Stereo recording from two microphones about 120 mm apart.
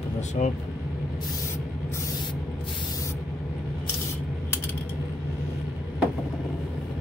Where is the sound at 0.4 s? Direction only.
90° left.